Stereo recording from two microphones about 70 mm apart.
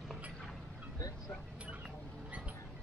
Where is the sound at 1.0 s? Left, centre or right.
Left.